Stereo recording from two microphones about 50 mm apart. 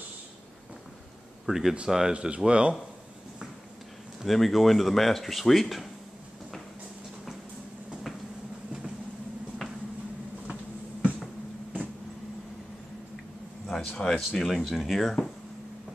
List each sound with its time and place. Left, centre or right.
1.4 s speech: centre
2.1 s speech: right
4.2 s speech: centre
10.5 s a sound: right
13.7 s speech: centre